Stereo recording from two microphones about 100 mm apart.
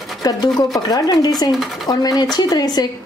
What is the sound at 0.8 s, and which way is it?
Speech, 45° left (ahead or behind).